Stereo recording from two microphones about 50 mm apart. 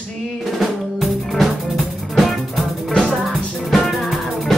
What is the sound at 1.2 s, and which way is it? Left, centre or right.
Music, centre.